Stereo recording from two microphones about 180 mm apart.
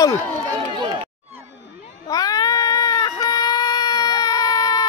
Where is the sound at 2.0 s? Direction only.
20° left (ahead or behind).